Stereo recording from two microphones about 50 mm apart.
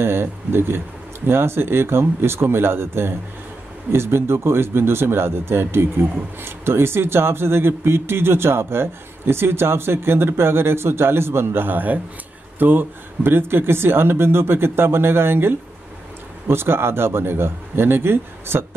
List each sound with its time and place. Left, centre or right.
0.0 s speech: right